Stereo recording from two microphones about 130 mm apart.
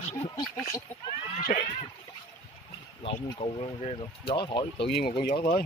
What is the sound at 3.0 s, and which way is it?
Speech, 50° left (ahead or behind).